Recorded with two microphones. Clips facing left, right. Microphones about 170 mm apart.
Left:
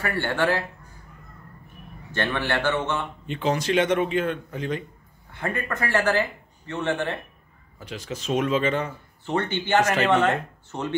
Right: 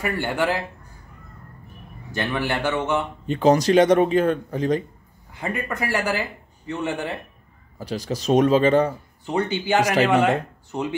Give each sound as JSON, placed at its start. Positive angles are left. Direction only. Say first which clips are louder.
{"t": 0.0, "sound": "speech", "louder": "right 1 dB", "side_deg": -15}
{"t": 2.1, "sound": "speech", "louder": "right 1 dB", "side_deg": -10}
{"t": 3.3, "sound": "speech", "louder": "right 8 dB", "side_deg": -40}
{"t": 5.4, "sound": "speech", "louder": "right 1 dB", "side_deg": -10}
{"t": 7.8, "sound": "speech", "louder": "right 7 dB", "side_deg": -35}
{"t": 9.2, "sound": "speech", "louder": "right 2 dB", "side_deg": -15}